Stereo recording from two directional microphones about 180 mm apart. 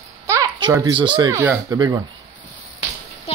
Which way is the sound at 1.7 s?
25° right (ahead or behind).